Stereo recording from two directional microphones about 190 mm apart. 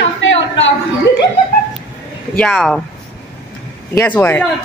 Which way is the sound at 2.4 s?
5° left (ahead or behind).